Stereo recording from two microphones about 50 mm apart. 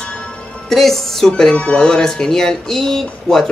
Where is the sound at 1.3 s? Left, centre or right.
Centre.